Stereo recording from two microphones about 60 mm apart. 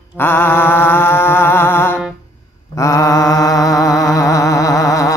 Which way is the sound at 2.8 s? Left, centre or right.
Left.